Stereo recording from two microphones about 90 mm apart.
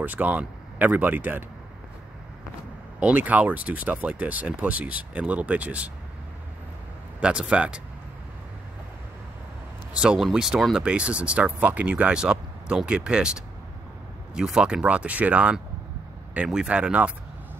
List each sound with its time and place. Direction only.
0.0 s speech: 20° right (ahead or behind)
3.0 s speech: 15° right (ahead or behind)
7.2 s speech: 10° right (ahead or behind)
9.9 s speech: 5° right (ahead or behind)